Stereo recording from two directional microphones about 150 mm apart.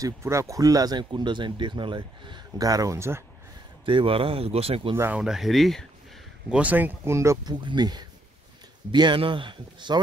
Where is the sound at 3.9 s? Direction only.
35° right (ahead or behind).